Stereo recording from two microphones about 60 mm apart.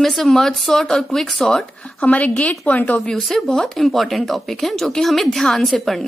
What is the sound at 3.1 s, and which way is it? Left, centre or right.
A woman's voice, centre.